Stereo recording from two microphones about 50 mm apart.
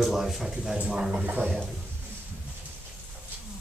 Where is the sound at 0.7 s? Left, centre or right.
Right.